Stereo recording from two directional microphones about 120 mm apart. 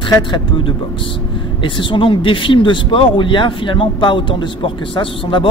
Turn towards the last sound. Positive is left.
turn(degrees=45)  # may be behind; listen again after turning